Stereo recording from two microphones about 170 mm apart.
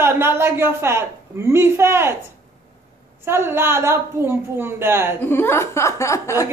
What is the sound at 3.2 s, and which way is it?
A man's voice, 15° right (ahead or behind).